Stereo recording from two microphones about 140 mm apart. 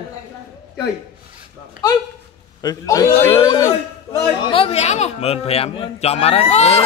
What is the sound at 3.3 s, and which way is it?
A man's voice, 35° left (ahead or behind).